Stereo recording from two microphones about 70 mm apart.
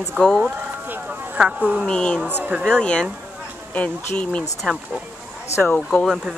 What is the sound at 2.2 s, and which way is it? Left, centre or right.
Speech, right.